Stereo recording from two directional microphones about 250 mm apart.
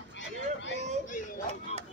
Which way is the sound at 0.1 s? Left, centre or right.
Left.